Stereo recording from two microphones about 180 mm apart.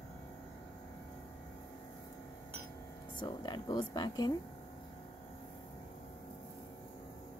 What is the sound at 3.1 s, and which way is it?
A woman's voice, 25° left (ahead or behind).